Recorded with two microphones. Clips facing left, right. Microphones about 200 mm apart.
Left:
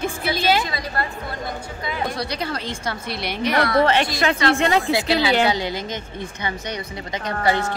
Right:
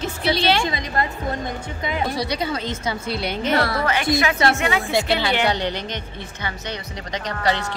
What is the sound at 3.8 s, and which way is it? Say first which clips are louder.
Speech: left 1 dB; 30° left (ahead or behind).